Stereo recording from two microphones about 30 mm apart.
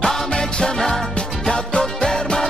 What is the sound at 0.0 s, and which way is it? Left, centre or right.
Music, left.